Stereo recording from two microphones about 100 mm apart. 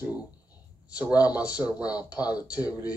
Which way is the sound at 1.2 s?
15° right (ahead or behind).